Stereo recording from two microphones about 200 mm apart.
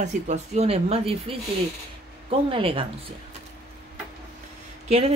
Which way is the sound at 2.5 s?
25° right (ahead or behind).